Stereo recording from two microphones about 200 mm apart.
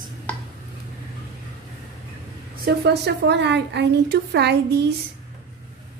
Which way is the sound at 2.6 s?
55° right (ahead or behind).